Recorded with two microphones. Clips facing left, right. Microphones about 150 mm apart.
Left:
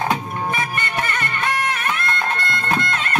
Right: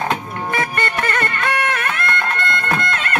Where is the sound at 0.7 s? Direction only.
55° right (ahead or behind).